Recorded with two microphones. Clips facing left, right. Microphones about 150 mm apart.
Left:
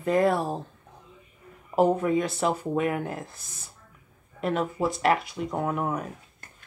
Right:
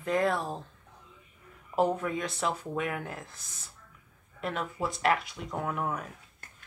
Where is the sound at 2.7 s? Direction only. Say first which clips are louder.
Left 7 dB; 40° left (ahead or behind).